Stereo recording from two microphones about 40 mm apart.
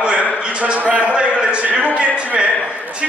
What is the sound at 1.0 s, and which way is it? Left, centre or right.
A man's voice, right.